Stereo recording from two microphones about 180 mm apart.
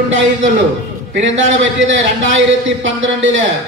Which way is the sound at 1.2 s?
90° right.